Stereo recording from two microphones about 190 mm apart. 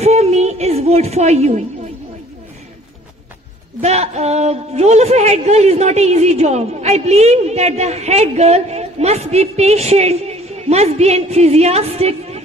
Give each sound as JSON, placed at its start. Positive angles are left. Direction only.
{"t": 0.0, "sound": "music", "side_deg": -35}
{"t": 3.8, "sound": "a woman's voice", "side_deg": -35}